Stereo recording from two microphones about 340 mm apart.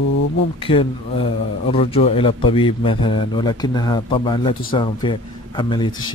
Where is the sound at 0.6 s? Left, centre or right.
Centre.